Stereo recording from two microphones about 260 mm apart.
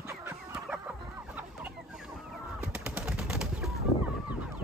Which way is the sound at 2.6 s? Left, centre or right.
Centre.